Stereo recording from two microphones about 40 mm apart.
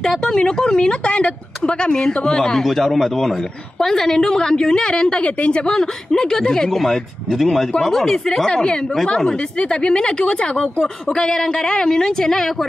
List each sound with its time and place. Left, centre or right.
0.2 s speech: centre